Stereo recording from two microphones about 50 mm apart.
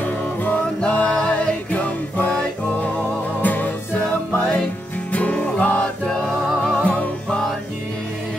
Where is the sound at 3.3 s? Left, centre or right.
Left.